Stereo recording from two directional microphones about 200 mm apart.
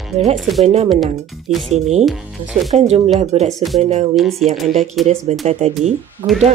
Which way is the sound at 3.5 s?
Centre (ahead or behind).